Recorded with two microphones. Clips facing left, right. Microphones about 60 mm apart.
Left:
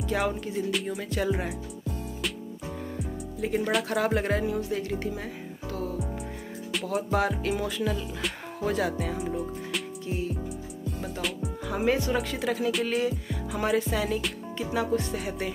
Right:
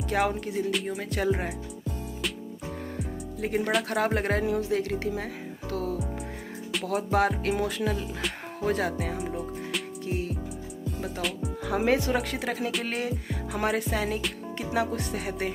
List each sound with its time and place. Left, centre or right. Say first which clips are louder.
0.1 s speech: right 2 dB; right
3.3 s speech: even; right
4.6 s speech: right 2 dB; right
6.9 s speech: right 2 dB; right
8.6 s speech: even; right
9.2 s music: left 1 dB; centre
10.0 s music: right 1 dB; right
11.1 s music: even; centre
11.6 s speech: right 1 dB; right
13.5 s music: left 1 dB; right
13.9 s speech: left 1 dB; right
14.6 s speech: left 1 dB; right